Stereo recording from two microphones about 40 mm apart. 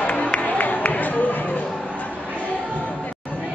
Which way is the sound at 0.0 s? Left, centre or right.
Left.